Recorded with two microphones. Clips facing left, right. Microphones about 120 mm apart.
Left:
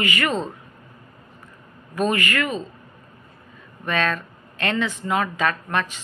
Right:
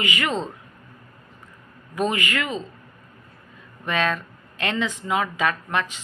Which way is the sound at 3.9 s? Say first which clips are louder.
Even; 15° right (ahead or behind).